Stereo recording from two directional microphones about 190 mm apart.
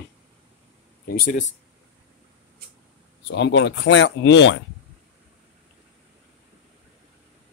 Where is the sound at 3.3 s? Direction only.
65° left (ahead or behind).